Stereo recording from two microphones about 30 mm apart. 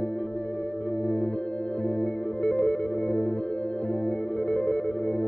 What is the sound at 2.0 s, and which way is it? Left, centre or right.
Music, left.